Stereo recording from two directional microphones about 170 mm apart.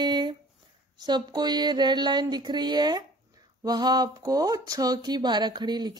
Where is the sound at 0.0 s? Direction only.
25° right (ahead or behind).